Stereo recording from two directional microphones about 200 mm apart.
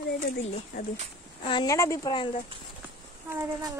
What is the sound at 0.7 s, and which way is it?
Speech, 45° left (ahead or behind).